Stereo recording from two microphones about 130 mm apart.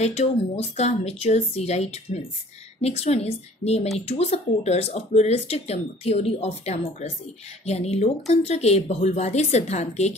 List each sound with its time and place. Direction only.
0.0 s speech: 55° left (ahead or behind)